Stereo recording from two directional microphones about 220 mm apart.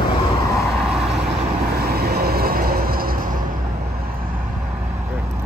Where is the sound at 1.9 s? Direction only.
45° right (ahead or behind).